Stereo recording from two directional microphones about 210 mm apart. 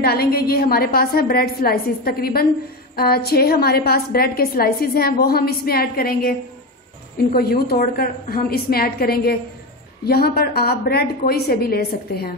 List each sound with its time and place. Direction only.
0.0 s a woman's voice: 45° left (ahead or behind)
7.3 s a woman's voice: 45° left (ahead or behind)